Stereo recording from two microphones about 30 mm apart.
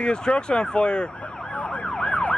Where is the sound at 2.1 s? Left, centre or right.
Left.